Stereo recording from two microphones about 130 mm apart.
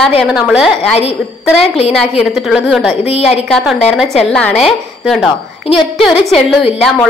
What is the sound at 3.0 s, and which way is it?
Speech, 50° left (ahead or behind).